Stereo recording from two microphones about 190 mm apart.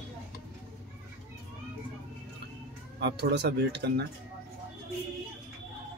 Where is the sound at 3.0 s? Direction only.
65° right (ahead or behind).